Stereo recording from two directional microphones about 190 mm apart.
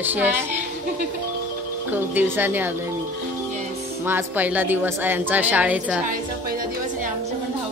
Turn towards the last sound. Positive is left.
turn(degrees=-5)  # may be behind; listen again after turning